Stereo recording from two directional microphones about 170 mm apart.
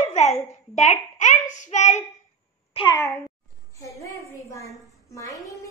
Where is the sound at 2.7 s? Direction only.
30° left (ahead or behind).